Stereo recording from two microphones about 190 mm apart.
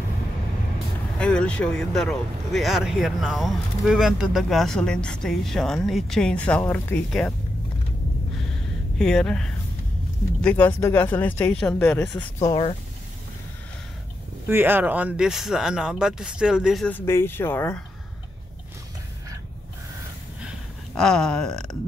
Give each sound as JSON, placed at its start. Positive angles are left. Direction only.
{"t": 1.1, "sound": "speech", "side_deg": 5}
{"t": 8.9, "sound": "speech", "side_deg": 5}
{"t": 12.4, "sound": "speech", "side_deg": 30}
{"t": 14.5, "sound": "speech", "side_deg": -10}
{"t": 20.4, "sound": "a sound", "side_deg": 5}